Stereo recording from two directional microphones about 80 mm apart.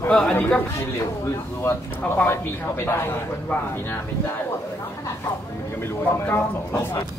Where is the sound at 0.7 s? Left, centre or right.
Left.